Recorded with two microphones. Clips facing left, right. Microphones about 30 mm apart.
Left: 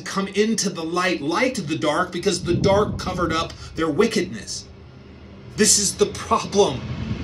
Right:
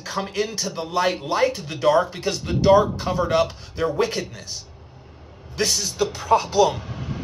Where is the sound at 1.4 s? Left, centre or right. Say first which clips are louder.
Right 2 dB; left.